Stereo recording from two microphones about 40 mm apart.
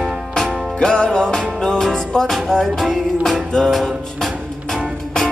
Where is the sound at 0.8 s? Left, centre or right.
Left.